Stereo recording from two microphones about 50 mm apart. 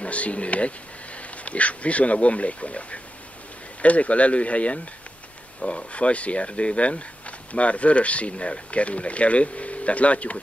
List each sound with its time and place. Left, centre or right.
0.0 s speech: left